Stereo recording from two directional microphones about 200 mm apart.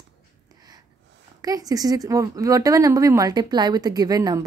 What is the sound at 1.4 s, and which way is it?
Speech, 20° right (ahead or behind).